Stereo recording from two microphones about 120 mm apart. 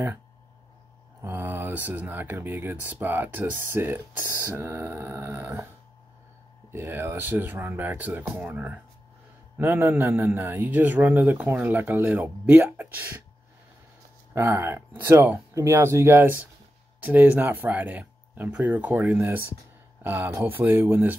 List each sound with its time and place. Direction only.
1.2 s a man's voice: 15° right (ahead or behind)
6.7 s a man's voice: 20° right (ahead or behind)
14.3 s a man's voice: 20° right (ahead or behind)